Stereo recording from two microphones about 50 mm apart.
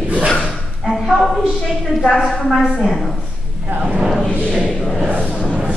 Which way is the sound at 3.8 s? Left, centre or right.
Centre.